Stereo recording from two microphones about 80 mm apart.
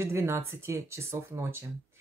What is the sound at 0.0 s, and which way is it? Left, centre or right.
Speech, right.